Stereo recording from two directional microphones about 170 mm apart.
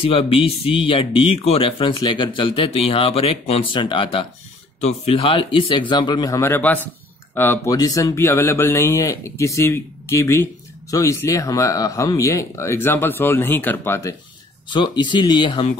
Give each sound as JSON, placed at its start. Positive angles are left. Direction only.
{"t": 0.0, "sound": "speech", "side_deg": 35}
{"t": 14.7, "sound": "speech", "side_deg": 25}